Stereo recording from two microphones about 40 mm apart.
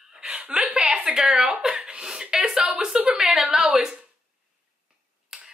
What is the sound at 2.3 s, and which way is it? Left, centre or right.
Speech, centre.